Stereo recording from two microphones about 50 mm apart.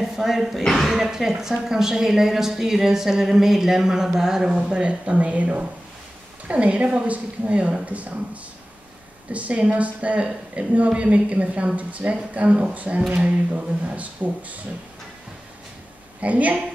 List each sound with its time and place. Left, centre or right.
0.0 s a woman's voice: centre
1.0 s a woman's voice: centre
4.5 s a woman's voice: centre
9.3 s a woman's voice: right
16.2 s speech: right